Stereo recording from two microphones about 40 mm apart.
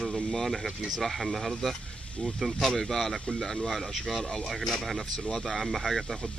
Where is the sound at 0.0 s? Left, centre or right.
Centre.